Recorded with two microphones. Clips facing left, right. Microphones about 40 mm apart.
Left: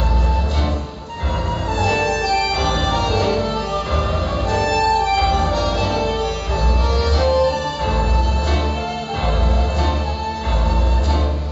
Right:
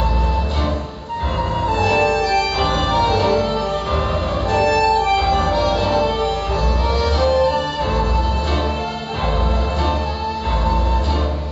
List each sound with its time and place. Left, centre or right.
1.8 s music: centre
4.5 s music: centre